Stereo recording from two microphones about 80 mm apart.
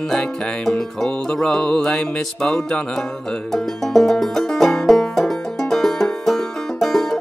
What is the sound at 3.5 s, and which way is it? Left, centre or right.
Banjo, centre.